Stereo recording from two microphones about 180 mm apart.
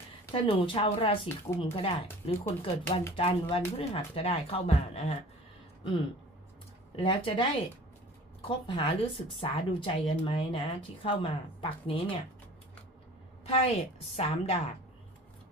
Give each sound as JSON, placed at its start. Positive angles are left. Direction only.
{"t": 0.3, "sound": "speech", "side_deg": 30}
{"t": 7.0, "sound": "speech", "side_deg": 30}
{"t": 13.5, "sound": "speech", "side_deg": 35}